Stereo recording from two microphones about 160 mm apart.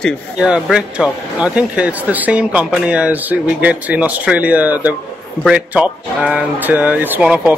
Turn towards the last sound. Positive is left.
turn(degrees=-5)  # may be behind; listen again after turning